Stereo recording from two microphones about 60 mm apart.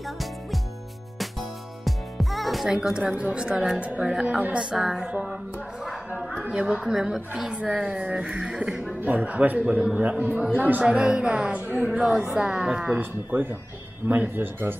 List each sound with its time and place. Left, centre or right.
1.9 s music: centre
2.7 s a woman's voice: centre
6.5 s a woman's voice: centre
7.5 s a woman's voice: centre
9.0 s a woman's voice: right
12.9 s speech: right